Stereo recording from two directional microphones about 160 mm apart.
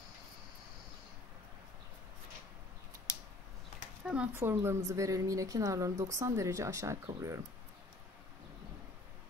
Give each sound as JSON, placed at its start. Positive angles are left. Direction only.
{"t": 4.0, "sound": "a woman's voice", "side_deg": -5}